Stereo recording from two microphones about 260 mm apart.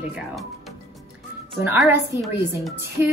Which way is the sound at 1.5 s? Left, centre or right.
Centre.